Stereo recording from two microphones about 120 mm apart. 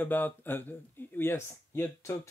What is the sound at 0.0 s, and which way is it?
Speech, 15° left (ahead or behind).